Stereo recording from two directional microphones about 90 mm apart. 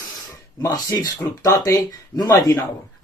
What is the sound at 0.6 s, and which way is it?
Speech, 35° left (ahead or behind).